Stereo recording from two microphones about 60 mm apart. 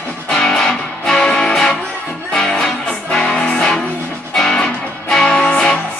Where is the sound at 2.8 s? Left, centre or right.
Centre.